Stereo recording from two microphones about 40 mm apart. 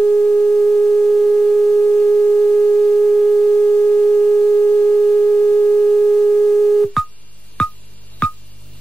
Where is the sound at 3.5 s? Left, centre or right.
Left.